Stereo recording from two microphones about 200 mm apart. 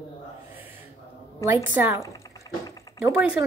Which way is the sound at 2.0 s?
15° left (ahead or behind).